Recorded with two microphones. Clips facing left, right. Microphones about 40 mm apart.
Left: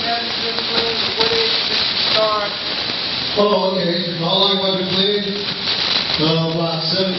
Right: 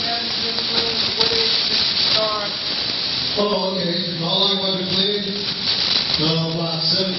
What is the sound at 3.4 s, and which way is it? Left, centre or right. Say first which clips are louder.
Speech: left 5 dB; centre.